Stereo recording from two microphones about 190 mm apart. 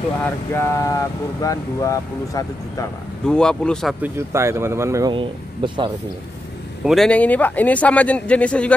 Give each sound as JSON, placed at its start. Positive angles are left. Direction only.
{"t": 0.2, "sound": "speech", "side_deg": 15}
{"t": 3.3, "sound": "speech", "side_deg": 5}
{"t": 4.0, "sound": "speech", "side_deg": -15}
{"t": 6.8, "sound": "speech", "side_deg": 0}